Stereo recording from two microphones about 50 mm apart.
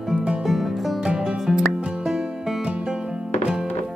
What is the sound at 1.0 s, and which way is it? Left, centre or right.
Music, centre.